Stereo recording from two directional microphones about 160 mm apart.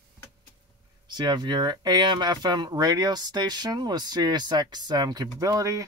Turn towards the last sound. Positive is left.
turn(degrees=-20)  # may be behind; listen again after turning